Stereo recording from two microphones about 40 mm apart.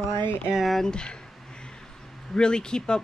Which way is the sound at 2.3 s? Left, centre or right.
Left.